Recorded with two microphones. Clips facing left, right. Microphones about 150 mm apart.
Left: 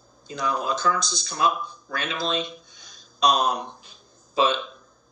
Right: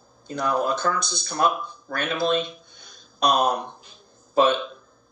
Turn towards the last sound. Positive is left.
turn(degrees=-55)  # may be behind; listen again after turning